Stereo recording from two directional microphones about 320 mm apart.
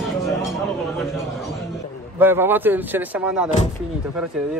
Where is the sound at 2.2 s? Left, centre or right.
Centre.